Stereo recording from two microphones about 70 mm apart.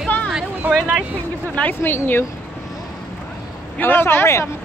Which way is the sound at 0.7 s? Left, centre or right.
Centre.